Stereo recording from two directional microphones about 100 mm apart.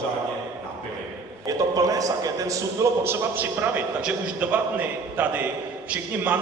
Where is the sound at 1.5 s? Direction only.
35° right (ahead or behind).